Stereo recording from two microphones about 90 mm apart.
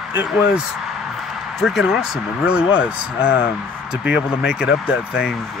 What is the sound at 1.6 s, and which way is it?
Speech, 5° right (ahead or behind).